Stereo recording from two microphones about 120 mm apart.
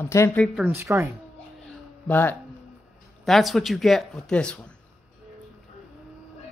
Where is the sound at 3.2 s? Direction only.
Centre (ahead or behind).